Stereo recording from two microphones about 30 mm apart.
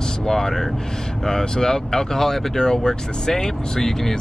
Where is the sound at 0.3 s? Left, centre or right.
Centre.